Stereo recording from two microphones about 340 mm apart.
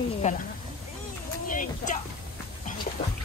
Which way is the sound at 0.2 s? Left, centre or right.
Centre.